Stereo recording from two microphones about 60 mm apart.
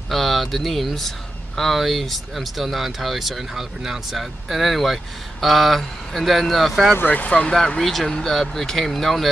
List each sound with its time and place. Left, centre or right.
0.1 s speech: centre
6.9 s speech: left
7.5 s speech: centre